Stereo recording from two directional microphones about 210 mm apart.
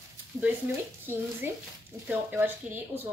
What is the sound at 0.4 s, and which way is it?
A woman's voice, 5° right (ahead or behind).